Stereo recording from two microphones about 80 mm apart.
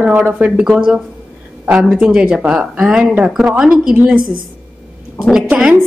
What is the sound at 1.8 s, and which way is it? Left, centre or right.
A woman's voice, centre.